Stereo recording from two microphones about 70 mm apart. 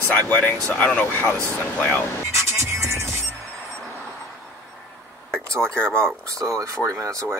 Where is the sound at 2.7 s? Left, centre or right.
Right.